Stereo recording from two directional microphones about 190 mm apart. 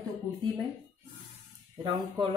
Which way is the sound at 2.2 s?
25° right (ahead or behind).